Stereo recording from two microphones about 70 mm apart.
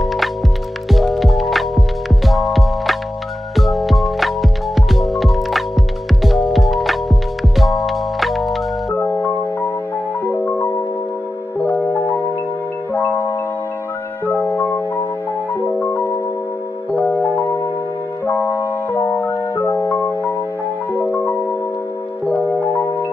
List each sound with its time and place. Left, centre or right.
0.0 s music: centre
8.9 s music: left
11.8 s marimba: left
14.2 s music: left
17.4 s music: left
21.0 s music: left
22.7 s music: left